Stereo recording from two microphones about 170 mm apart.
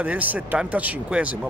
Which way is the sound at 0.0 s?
10° right (ahead or behind).